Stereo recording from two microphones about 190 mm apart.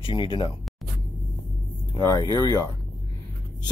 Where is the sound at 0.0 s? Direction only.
25° left (ahead or behind).